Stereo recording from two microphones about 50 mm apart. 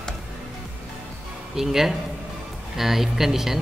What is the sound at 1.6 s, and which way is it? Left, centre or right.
A man's voice, centre.